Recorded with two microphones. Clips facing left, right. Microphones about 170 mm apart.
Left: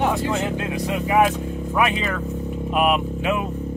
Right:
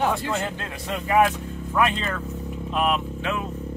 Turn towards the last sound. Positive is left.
turn(degrees=15)  # may be behind; listen again after turning